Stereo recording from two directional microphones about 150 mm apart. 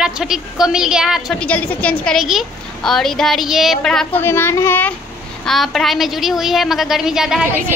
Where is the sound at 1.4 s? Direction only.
10° left (ahead or behind).